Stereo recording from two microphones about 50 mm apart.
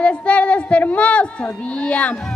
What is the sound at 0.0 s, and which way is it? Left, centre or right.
Speech, left.